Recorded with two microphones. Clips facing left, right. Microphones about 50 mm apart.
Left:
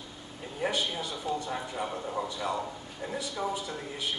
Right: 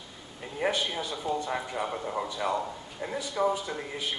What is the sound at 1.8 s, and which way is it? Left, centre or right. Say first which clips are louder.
Speech: right 2 dB; right.